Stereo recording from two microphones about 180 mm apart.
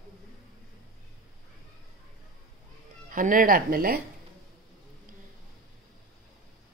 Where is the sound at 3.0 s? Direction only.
50° right (ahead or behind).